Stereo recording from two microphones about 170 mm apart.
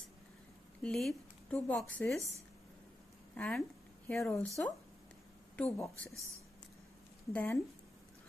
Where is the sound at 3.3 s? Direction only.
5° left (ahead or behind).